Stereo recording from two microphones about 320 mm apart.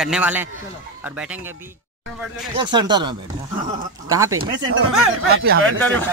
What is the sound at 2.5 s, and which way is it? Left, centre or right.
Speech, centre.